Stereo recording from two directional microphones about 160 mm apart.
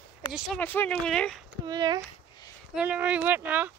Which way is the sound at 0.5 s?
10° left (ahead or behind).